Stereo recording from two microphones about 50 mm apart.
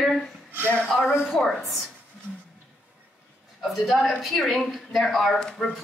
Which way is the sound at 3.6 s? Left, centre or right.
Centre.